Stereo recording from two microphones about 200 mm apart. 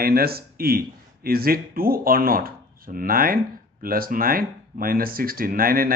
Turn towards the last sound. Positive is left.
turn(degrees=-45)  # may be behind; listen again after turning